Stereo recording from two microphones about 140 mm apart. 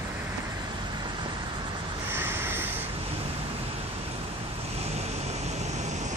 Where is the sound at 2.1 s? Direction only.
15° right (ahead or behind).